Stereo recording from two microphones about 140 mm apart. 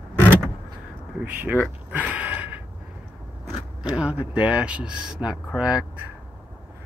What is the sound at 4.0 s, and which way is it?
Speech, 10° right (ahead or behind).